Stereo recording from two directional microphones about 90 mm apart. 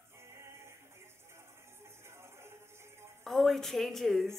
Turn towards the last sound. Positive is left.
turn(degrees=0)  # may be behind; listen again after turning